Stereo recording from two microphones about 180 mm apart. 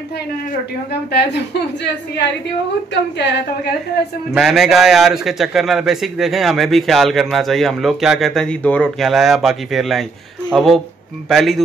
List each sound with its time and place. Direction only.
2.9 s a woman's voice: 70° left (ahead or behind)
4.3 s a man's voice: centre (ahead or behind)